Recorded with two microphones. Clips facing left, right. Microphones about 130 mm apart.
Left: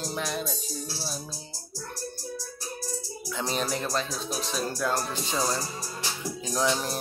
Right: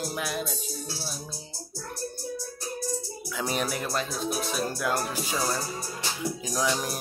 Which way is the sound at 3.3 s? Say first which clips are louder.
Even; 10° right (ahead or behind).